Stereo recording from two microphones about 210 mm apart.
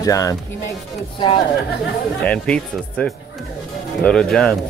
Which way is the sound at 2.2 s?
5° left (ahead or behind).